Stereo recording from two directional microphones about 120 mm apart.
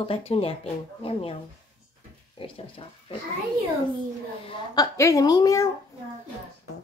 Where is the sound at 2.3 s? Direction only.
50° left (ahead or behind).